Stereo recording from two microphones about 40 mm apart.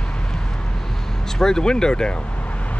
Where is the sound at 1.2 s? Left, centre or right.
Centre.